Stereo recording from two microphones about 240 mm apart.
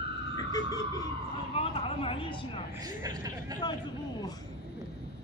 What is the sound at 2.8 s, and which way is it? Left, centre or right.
Speech, centre.